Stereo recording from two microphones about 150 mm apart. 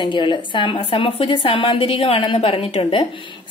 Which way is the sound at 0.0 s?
30° left (ahead or behind).